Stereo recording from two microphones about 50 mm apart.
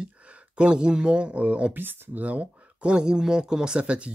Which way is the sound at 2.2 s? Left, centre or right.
Right.